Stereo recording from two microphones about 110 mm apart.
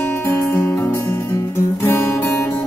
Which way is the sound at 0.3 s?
20° left (ahead or behind).